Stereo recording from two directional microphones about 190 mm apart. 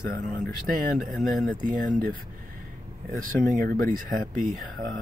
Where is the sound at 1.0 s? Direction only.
Centre (ahead or behind).